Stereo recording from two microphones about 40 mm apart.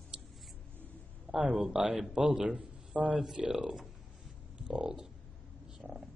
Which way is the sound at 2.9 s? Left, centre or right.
Right.